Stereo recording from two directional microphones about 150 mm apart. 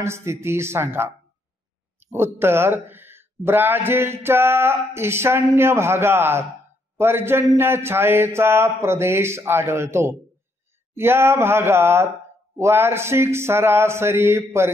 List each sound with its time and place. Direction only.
0.0 s speech: 20° right (ahead or behind)